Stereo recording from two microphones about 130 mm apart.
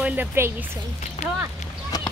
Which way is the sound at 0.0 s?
15° right (ahead or behind).